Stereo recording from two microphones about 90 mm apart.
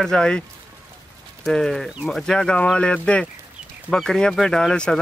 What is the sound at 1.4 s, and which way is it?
Speech, 5° left (ahead or behind).